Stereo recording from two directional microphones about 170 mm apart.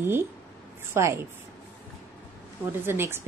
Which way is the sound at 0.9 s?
15° right (ahead or behind).